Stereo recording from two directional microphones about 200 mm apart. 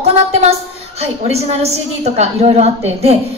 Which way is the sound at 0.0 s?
30° right (ahead or behind).